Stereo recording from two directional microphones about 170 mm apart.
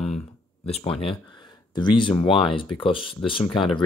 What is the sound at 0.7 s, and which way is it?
Speech, 35° left (ahead or behind).